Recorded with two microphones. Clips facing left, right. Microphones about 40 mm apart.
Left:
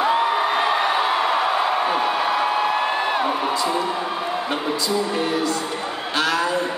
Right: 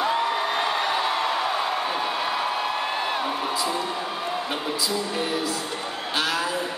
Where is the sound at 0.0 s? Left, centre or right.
Centre.